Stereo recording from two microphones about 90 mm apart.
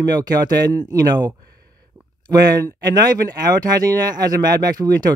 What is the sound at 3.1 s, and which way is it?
Speech, 45° right (ahead or behind).